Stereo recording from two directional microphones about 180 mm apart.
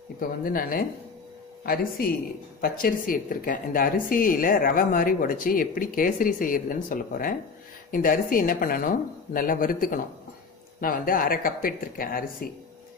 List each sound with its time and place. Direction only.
0.2 s a woman's voice: 55° left (ahead or behind)